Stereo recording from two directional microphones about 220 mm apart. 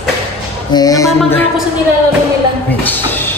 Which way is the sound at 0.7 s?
15° left (ahead or behind).